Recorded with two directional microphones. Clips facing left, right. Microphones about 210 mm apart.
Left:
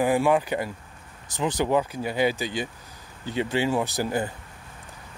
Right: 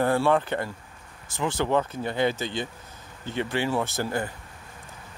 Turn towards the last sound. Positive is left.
turn(degrees=15)  # may be behind; listen again after turning